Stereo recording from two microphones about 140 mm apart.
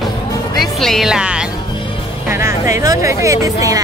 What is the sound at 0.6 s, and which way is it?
Speech, centre (ahead or behind).